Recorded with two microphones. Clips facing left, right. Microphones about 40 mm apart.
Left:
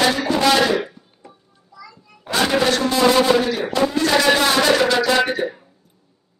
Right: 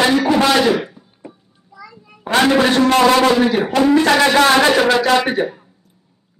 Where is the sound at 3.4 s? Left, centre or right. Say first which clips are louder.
Right 5 dB; right.